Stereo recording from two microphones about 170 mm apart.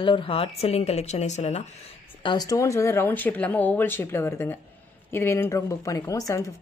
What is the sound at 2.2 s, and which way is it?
Speech, 25° left (ahead or behind).